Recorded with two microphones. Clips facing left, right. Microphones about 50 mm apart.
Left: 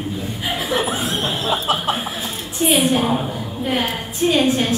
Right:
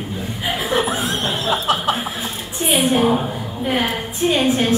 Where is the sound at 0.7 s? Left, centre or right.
Centre.